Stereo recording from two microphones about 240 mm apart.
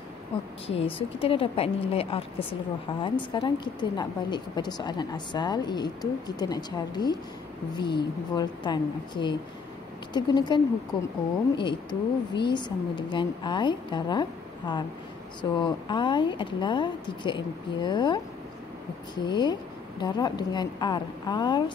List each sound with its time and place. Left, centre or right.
0.7 s a woman's voice: left